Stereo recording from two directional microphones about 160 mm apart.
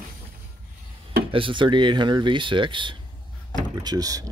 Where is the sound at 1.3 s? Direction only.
30° right (ahead or behind).